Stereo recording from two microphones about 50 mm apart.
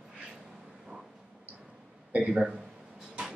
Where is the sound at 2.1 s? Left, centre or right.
Right.